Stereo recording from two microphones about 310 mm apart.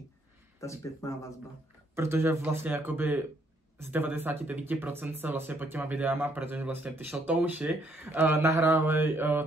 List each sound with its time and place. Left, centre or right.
0.6 s speech: centre
2.0 s speech: centre